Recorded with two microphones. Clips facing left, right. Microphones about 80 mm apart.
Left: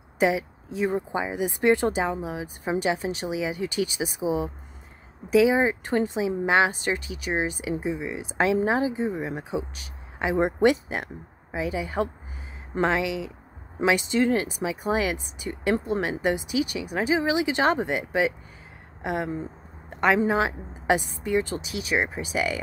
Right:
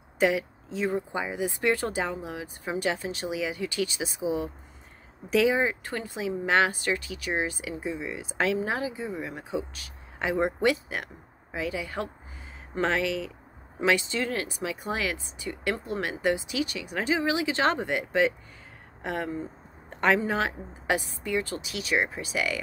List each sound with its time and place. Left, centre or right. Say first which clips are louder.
0.2 s speech: left 2 dB; centre
12.8 s speech: left 2 dB; centre